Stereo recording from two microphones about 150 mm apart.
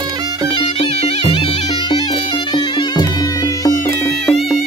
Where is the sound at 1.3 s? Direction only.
35° left (ahead or behind).